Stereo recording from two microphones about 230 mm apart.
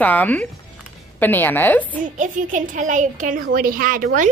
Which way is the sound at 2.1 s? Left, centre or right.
Right.